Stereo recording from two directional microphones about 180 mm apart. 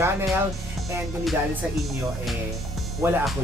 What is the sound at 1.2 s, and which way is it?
Music, centre (ahead or behind).